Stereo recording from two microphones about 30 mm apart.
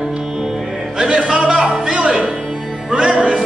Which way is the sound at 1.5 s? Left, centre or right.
Centre.